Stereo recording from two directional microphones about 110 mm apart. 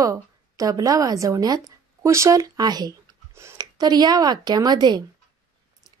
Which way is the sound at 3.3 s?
25° right (ahead or behind).